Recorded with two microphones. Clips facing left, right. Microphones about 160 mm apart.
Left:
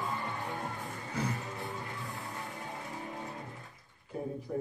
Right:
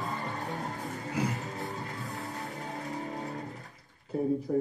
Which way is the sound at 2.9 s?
40° right (ahead or behind).